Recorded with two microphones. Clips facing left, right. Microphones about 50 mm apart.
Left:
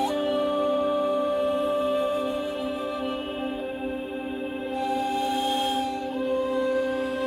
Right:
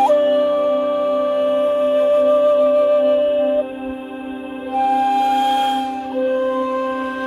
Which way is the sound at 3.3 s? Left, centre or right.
Centre.